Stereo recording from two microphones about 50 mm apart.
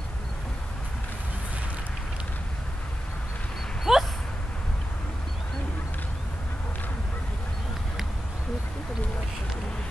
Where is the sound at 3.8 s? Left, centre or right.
Centre.